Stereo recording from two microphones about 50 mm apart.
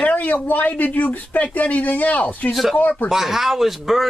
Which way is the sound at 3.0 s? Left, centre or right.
Centre.